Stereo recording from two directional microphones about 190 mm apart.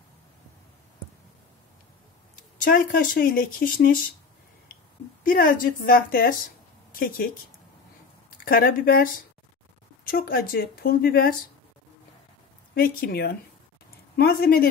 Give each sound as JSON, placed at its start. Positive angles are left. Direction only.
{"t": 2.6, "sound": "speech", "side_deg": 45}
{"t": 5.2, "sound": "speech", "side_deg": 45}
{"t": 6.9, "sound": "a sound", "side_deg": 50}
{"t": 8.5, "sound": "speech", "side_deg": 50}
{"t": 12.7, "sound": "speech", "side_deg": 55}